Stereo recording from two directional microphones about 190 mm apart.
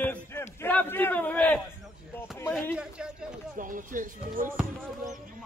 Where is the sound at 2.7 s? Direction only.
5° right (ahead or behind).